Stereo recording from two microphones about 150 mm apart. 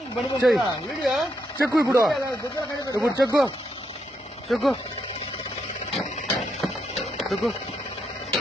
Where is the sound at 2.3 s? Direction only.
20° left (ahead or behind).